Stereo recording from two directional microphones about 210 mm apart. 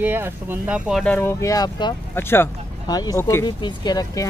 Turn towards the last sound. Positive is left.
turn(degrees=20)  # may be behind; listen again after turning